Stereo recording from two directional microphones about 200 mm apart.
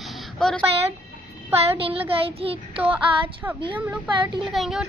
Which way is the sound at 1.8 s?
30° right (ahead or behind).